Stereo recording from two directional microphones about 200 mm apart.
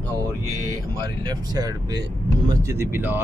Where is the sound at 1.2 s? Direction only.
20° right (ahead or behind).